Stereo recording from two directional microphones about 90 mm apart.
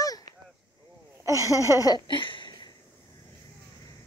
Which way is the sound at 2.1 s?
65° left (ahead or behind).